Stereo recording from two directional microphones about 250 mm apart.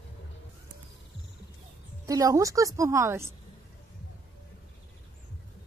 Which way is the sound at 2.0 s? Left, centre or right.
Centre.